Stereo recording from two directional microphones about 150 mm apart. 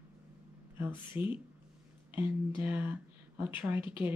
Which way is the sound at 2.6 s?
15° right (ahead or behind).